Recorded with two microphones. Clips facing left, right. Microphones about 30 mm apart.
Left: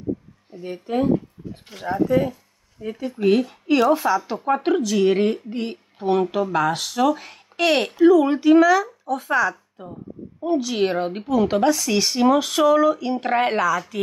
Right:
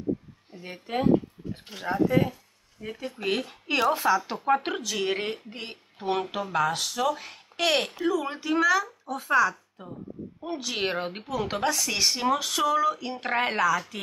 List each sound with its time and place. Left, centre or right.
0.6 s speech: centre
2.0 s speech: centre
5.9 s speech: centre
6.5 s speech: centre
10.4 s speech: centre